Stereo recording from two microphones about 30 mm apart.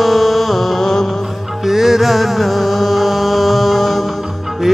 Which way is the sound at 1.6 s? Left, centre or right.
Centre.